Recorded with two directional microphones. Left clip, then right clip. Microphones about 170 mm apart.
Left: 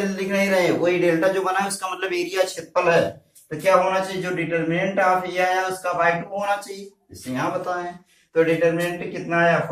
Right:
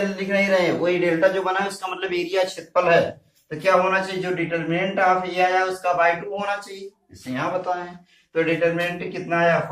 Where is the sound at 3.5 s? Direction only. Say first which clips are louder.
Even; 10° left (ahead or behind).